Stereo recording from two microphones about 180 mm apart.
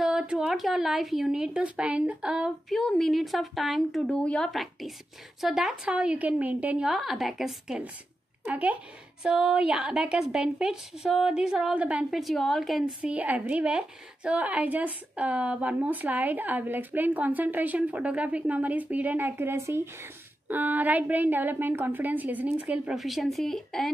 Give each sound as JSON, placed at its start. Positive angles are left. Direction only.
{"t": 0.0, "sound": "a woman's voice", "side_deg": -5}